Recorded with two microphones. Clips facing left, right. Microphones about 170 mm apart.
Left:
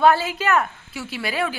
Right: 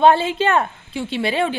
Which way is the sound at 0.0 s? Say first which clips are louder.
Right 3 dB; 25° right (ahead or behind).